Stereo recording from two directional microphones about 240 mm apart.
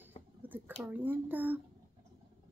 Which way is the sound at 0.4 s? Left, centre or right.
Centre.